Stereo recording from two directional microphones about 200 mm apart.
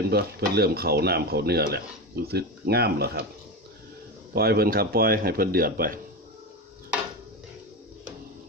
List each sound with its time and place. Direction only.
0.1 s speech: 50° right (ahead or behind)
4.3 s speech: 50° right (ahead or behind)